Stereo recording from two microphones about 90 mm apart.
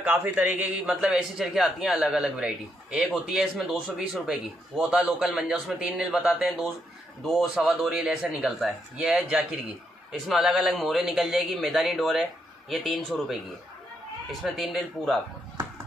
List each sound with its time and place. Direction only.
0.0 s a man's voice: 20° right (ahead or behind)
0.8 s a man's voice: 5° right (ahead or behind)
6.1 s a man's voice: centre (ahead or behind)
14.4 s a man's voice: centre (ahead or behind)